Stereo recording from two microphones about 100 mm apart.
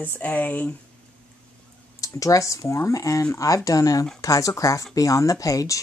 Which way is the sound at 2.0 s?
35° left (ahead or behind).